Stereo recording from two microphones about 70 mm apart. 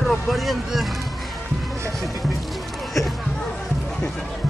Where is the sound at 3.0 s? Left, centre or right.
Left.